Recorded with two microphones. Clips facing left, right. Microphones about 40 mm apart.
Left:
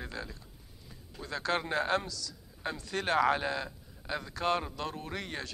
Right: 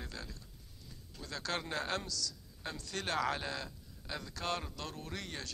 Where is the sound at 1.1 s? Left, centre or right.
Centre.